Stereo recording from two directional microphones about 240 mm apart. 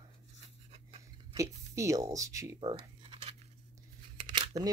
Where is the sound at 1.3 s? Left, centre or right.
Centre.